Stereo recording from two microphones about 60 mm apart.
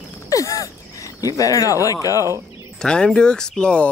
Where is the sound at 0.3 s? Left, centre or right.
Left.